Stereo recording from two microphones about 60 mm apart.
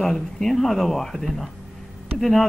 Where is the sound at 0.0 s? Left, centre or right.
Centre.